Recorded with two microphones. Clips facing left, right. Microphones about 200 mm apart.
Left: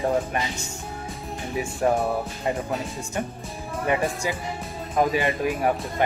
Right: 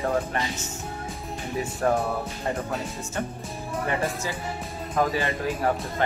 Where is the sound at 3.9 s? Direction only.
15° left (ahead or behind).